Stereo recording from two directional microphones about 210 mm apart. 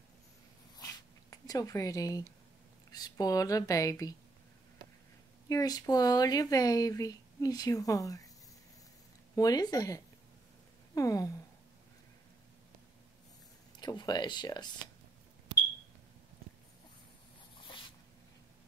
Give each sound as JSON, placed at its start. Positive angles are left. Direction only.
{"t": 1.3, "sound": "speech", "side_deg": 15}
{"t": 5.5, "sound": "speech", "side_deg": 15}
{"t": 9.3, "sound": "speech", "side_deg": 15}
{"t": 13.7, "sound": "speech", "side_deg": 20}
{"t": 17.6, "sound": "a sound", "side_deg": 25}